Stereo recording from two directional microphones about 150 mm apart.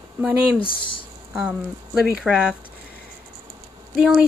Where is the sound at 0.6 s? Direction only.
35° left (ahead or behind).